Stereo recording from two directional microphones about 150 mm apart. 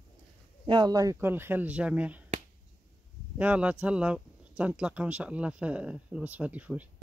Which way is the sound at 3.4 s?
10° right (ahead or behind).